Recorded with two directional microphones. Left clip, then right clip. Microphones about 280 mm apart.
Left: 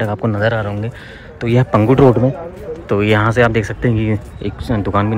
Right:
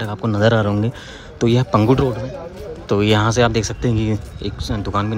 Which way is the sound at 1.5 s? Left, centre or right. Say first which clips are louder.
Left 3 dB; centre.